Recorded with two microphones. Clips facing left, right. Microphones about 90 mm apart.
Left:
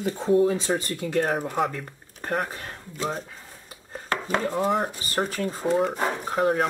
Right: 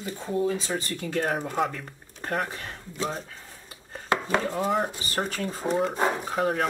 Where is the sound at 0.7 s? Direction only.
35° left (ahead or behind).